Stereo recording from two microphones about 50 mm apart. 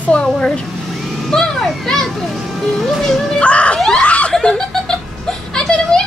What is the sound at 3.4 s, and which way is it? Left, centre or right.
Screaming, left.